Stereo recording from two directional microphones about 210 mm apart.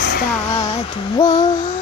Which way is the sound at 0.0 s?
45° left (ahead or behind).